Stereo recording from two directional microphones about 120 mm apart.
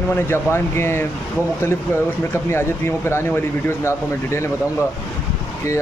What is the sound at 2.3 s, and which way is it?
Speech, 20° left (ahead or behind).